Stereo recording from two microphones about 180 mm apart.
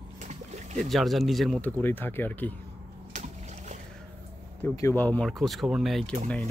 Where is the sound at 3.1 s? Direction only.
40° right (ahead or behind).